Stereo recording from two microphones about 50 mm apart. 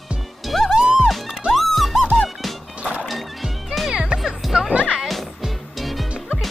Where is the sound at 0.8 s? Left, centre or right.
Centre.